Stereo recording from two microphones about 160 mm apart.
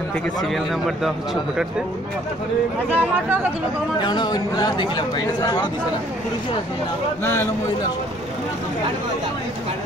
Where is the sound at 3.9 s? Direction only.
25° left (ahead or behind).